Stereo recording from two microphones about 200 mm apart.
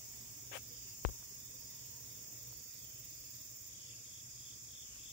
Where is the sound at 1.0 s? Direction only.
45° left (ahead or behind).